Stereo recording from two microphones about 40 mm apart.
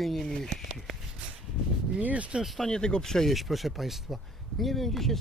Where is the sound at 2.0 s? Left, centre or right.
Right.